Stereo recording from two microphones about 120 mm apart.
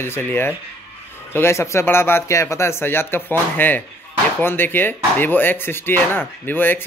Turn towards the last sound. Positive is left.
turn(degrees=15)  # may be behind; listen again after turning